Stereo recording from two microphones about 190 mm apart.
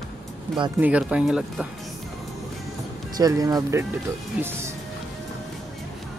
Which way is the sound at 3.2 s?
20° right (ahead or behind).